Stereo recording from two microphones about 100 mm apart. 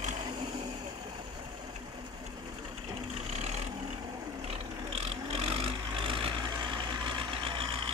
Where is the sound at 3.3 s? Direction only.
90° right.